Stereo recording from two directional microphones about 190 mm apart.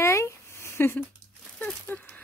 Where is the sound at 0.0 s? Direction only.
15° left (ahead or behind).